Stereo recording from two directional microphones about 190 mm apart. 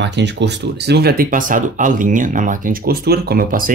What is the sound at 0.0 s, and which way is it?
Speech, 65° right (ahead or behind).